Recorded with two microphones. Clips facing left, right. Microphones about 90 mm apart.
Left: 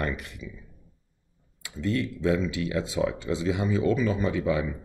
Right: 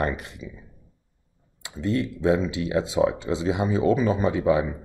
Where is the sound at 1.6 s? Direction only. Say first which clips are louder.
Right 2 dB; 25° right (ahead or behind).